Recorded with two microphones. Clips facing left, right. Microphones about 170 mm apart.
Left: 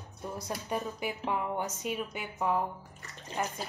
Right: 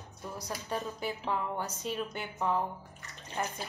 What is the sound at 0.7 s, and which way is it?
A woman's voice, 15° left (ahead or behind).